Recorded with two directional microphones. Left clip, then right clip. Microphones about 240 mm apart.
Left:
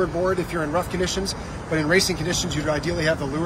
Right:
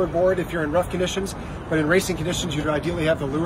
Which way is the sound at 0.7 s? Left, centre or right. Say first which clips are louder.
Right 3 dB; centre.